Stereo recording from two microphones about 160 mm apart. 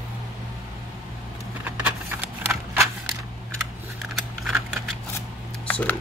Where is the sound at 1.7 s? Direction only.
10° right (ahead or behind).